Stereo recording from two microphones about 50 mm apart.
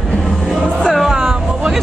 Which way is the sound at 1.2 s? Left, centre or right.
Centre.